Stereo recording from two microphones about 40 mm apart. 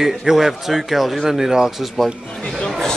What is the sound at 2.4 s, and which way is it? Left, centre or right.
Chatter, centre.